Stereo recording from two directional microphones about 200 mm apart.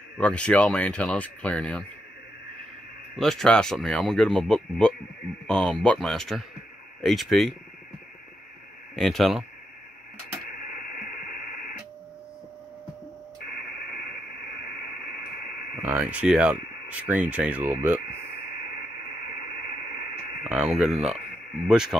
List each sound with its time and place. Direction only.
0.2 s speech: 5° left (ahead or behind)
3.2 s speech: centre (ahead or behind)
8.9 s speech: centre (ahead or behind)
10.8 s radio: 50° left (ahead or behind)
15.8 s speech: 5° right (ahead or behind)
20.7 s speech: centre (ahead or behind)